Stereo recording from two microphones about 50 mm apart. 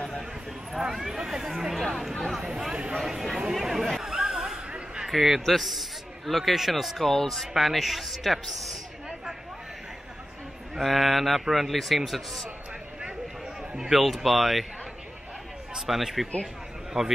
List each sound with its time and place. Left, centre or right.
0.7 s a man's voice: centre
2.7 s speech: right
3.5 s a sound: centre
4.0 s a sound: centre
5.1 s a man's voice: centre
10.8 s a man's voice: centre
13.7 s a man's voice: centre
15.7 s a man's voice: centre
17.0 s speech: centre